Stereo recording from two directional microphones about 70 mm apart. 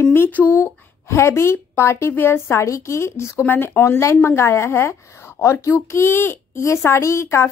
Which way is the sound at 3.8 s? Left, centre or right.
Left.